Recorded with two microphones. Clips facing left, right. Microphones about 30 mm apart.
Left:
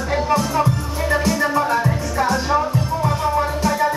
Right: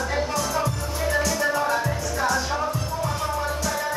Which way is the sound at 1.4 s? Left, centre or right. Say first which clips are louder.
Left 5 dB; centre.